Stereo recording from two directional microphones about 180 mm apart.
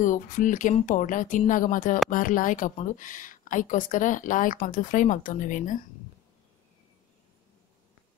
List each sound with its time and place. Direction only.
0.0 s speech: 45° left (ahead or behind)